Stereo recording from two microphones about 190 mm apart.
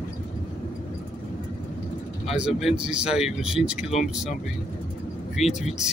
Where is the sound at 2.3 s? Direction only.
5° right (ahead or behind).